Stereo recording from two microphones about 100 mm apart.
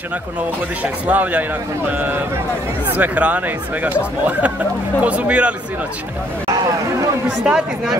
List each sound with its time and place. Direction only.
1.0 s speech: 15° right (ahead or behind)
7.2 s speech: 5° right (ahead or behind)